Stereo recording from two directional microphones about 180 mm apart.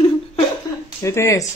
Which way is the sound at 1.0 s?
15° left (ahead or behind).